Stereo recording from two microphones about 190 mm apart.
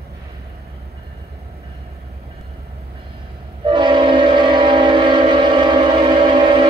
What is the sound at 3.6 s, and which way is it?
Train, 25° right (ahead or behind).